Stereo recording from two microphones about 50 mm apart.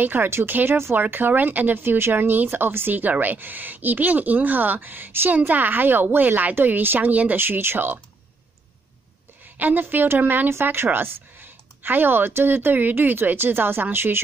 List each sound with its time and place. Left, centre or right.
0.0 s speech: right
1.8 s speech: right
7.0 s speech: right
7.3 s speech: right
9.6 s speech: right